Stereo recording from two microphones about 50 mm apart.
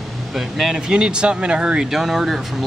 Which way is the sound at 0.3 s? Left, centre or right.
Centre.